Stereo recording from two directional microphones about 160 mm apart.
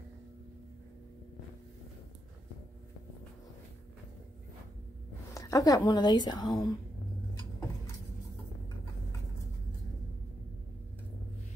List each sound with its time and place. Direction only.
5.3 s a woman's voice: 20° left (ahead or behind)